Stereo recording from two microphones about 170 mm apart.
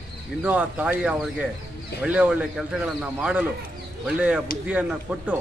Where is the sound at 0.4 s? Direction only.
10° right (ahead or behind).